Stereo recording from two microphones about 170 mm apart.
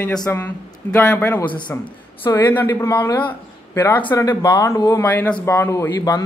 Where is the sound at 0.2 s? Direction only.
15° left (ahead or behind).